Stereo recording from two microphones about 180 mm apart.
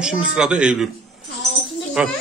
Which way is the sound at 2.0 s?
5° right (ahead or behind).